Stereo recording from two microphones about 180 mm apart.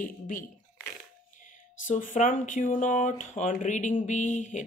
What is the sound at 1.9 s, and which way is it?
Speech, 45° left (ahead or behind).